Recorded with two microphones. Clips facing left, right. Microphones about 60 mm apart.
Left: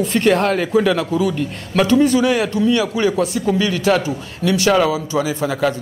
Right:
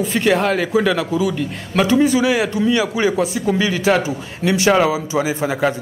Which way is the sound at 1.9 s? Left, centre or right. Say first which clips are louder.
Left 1 dB; centre.